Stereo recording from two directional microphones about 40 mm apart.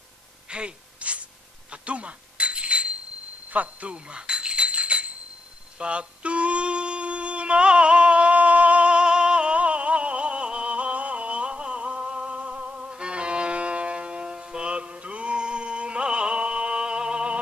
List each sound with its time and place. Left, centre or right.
0.5 s gasp: right
1.7 s bicycle bell: right
3.4 s jingle bell: right
5.8 s humming: right
12.4 s music: right